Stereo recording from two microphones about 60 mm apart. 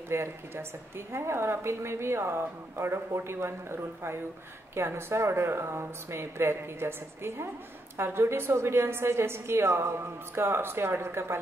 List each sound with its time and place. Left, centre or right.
0.1 s a woman's voice: right